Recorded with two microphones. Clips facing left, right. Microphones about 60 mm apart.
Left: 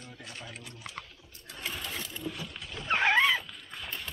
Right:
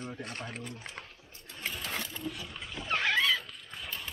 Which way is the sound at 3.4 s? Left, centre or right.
Centre.